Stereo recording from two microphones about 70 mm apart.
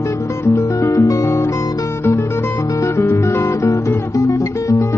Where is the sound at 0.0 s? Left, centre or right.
Left.